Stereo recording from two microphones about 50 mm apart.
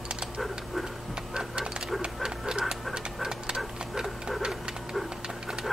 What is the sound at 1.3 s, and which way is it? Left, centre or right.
Music, centre.